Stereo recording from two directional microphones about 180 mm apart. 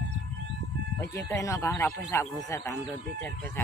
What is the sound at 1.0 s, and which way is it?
Speech, 15° left (ahead or behind).